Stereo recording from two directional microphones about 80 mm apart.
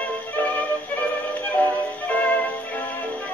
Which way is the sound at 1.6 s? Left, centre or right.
Left.